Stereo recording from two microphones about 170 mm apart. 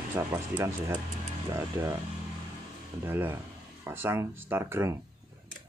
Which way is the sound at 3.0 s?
10° right (ahead or behind).